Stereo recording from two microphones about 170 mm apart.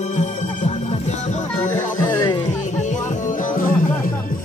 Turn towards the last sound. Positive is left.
turn(degrees=50)  # may be behind; listen again after turning